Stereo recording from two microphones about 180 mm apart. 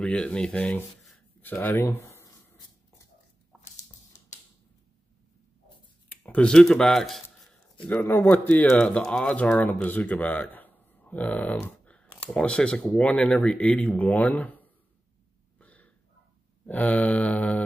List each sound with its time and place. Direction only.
0.0 s rub: 5° left (ahead or behind)
4.1 s typewriter: 45° left (ahead or behind)
6.0 s speech: 10° left (ahead or behind)
15.6 s a sound: 10° left (ahead or behind)
16.6 s speech: 10° left (ahead or behind)